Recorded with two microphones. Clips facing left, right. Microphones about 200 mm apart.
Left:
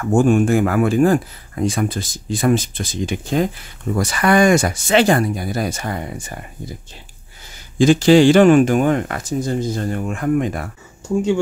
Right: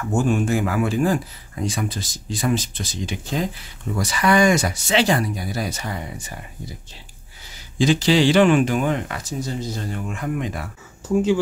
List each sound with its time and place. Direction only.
0.0 s speech: 55° left (ahead or behind)
7.8 s speech: 50° left (ahead or behind)